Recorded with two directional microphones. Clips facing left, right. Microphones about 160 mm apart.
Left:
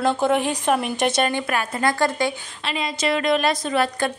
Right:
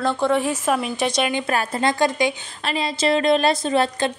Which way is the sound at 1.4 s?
30° right (ahead or behind).